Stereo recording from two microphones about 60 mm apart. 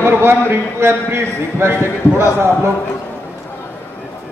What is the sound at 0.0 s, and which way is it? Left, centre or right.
A man's voice, right.